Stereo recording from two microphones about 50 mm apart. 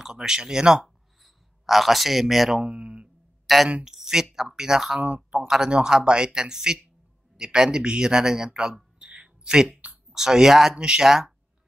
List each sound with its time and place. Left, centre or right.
0.0 s a man's voice: centre
0.8 s a sound: centre
2.6 s speech: right
3.4 s a man's voice: centre
9.0 s a sound: centre
10.1 s a man's voice: centre